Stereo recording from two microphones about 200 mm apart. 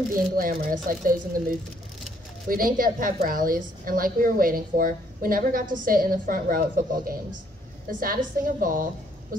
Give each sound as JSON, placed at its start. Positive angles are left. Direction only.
{"t": 0.4, "sound": "a woman's voice", "side_deg": -45}